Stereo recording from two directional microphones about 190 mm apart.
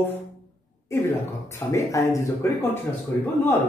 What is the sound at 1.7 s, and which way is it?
A man's voice, 15° left (ahead or behind).